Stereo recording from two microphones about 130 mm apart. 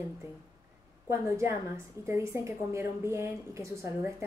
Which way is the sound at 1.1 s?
20° right (ahead or behind).